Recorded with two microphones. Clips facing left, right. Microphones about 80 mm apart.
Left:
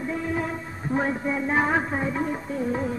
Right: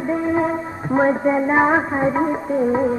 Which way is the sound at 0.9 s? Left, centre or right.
Right.